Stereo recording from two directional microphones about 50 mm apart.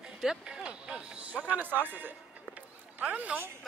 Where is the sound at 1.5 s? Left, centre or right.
Right.